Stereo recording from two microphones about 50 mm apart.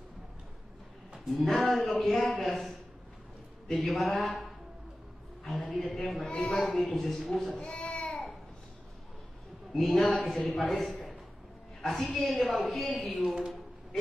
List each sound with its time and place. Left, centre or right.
1.2 s a man's voice: centre
5.7 s a woman's voice: centre
7.4 s child singing: centre
9.8 s a woman's voice: centre
12.0 s a woman's voice: centre
12.7 s a woman's voice: centre